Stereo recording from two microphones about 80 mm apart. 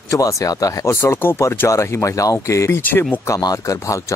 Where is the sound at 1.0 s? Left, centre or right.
Left.